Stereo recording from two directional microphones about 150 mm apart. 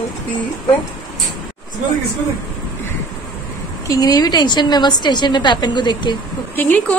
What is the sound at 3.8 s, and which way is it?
A woman's voice, 25° left (ahead or behind).